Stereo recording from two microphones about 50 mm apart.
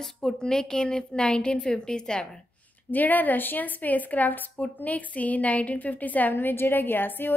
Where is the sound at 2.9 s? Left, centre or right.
Left.